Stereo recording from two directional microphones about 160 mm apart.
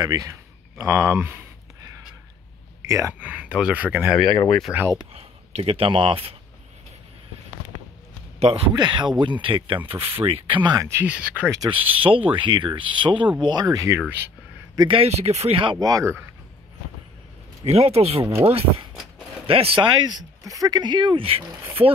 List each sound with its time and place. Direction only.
0.0 s speech: 25° right (ahead or behind)
2.9 s speech: 15° right (ahead or behind)
4.3 s speech: 25° left (ahead or behind)
5.1 s speech: 40° right (ahead or behind)
8.7 s speech: 30° right (ahead or behind)
10.6 s speech: 25° right (ahead or behind)
11.7 s speech: 35° right (ahead or behind); by 14.1 s 15° right (ahead or behind)
14.8 s speech: 35° right (ahead or behind); by 16.3 s 15° right (ahead or behind)
17.6 s speech: 40° right (ahead or behind)